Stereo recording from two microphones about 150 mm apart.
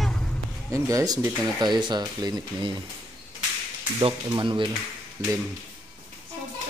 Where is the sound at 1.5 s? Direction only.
30° right (ahead or behind).